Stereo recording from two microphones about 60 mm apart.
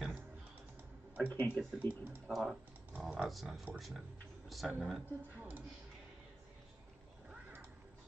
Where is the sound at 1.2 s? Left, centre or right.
Left.